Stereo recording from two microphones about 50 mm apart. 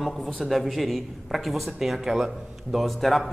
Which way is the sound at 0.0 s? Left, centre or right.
Centre.